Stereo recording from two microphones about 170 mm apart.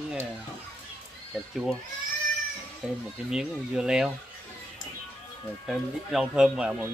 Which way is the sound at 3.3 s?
5° right (ahead or behind).